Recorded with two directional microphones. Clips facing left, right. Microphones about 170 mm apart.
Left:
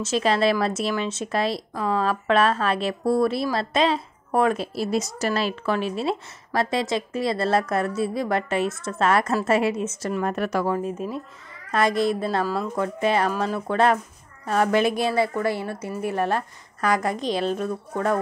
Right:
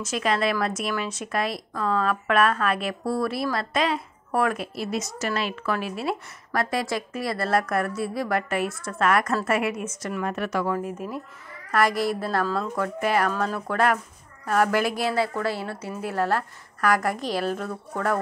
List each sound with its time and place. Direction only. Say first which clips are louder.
0.0 s a woman's voice: left 4 dB; 30° left (ahead or behind)